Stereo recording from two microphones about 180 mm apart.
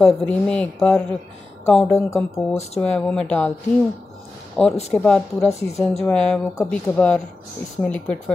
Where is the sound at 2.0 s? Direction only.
15° left (ahead or behind).